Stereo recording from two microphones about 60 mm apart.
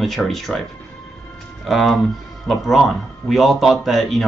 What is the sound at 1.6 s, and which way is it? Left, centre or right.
Speech, centre.